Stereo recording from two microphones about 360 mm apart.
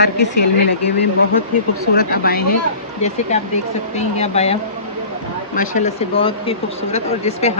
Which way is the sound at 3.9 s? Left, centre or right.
Centre.